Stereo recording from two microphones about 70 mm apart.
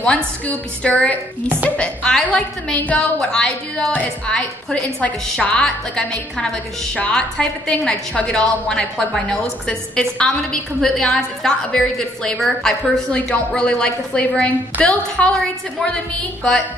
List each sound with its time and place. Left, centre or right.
0.0 s a woman's voice: centre
13.1 s a woman's voice: centre